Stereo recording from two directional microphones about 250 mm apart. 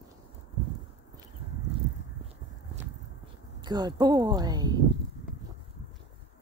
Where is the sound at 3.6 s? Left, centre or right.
Centre.